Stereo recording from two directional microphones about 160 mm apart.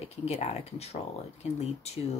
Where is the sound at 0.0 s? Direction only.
40° left (ahead or behind).